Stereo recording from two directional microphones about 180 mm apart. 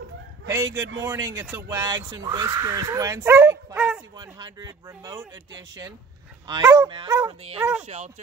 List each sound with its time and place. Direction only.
1.0 s speech: 15° right (ahead or behind)
4.2 s speech: 25° right (ahead or behind)
7.5 s speech: 10° right (ahead or behind)
7.8 s speech: 40° right (ahead or behind)